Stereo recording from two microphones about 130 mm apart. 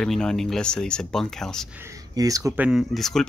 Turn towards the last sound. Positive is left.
turn(degrees=5)  # may be behind; listen again after turning